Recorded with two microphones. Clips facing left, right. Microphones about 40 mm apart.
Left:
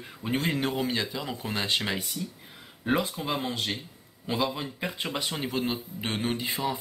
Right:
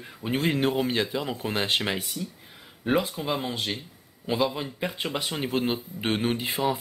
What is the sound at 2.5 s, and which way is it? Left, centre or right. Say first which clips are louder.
Speech: right 2 dB; centre.